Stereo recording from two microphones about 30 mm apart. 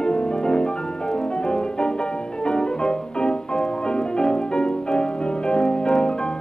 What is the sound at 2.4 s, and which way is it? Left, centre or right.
Music, left.